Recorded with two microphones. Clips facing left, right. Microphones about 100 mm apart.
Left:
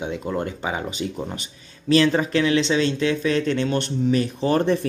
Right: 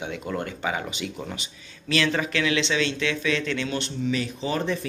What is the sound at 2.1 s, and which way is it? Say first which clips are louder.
Speech: left 5 dB; 35° left (ahead or behind).